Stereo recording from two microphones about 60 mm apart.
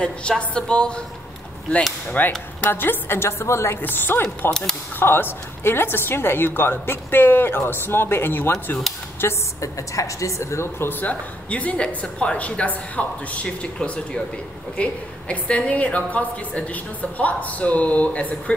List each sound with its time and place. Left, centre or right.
0.0 s a woman's voice: centre; by 3.7 s left
3.8 s a woman's voice: left
4.5 s a woman's voice: centre
4.9 s a woman's voice: left
9.6 s a woman's voice: left
11.1 s a woman's voice: left